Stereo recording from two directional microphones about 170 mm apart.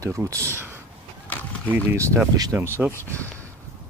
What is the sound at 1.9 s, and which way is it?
Speech, 10° right (ahead or behind).